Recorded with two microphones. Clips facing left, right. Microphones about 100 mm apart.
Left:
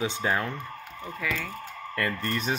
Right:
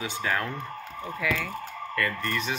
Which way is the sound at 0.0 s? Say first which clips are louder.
Left 2 dB; 25° left (ahead or behind).